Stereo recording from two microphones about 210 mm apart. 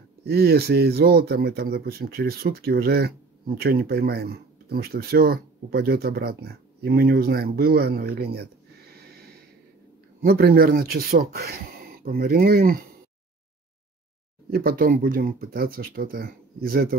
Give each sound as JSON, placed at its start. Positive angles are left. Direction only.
{"t": 0.2, "sound": "speech", "side_deg": -50}
{"t": 8.9, "sound": "a sound", "side_deg": -50}
{"t": 10.2, "sound": "speech", "side_deg": -45}
{"t": 14.5, "sound": "speech", "side_deg": -45}